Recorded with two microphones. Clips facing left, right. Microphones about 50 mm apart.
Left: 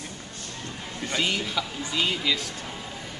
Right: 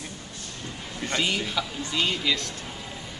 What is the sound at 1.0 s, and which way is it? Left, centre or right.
A man's voice, centre.